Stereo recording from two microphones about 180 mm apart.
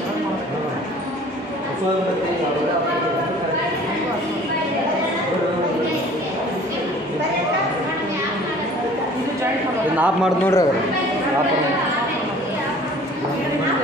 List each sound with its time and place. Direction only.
10.4 s speech: 15° left (ahead or behind)